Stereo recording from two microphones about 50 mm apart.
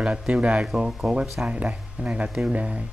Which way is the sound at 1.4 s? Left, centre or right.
Right.